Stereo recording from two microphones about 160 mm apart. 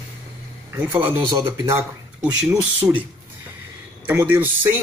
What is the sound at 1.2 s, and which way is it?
Speech, 30° right (ahead or behind).